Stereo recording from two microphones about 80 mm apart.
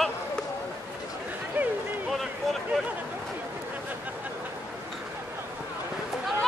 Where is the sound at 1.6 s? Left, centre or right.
Centre.